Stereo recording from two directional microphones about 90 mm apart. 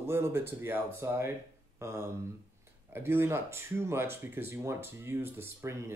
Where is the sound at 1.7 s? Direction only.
30° right (ahead or behind).